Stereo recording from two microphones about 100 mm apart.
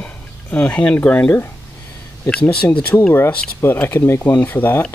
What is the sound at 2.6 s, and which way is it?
Speech, 20° left (ahead or behind).